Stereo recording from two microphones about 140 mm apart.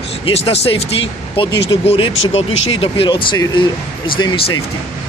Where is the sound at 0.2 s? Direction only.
45° left (ahead or behind).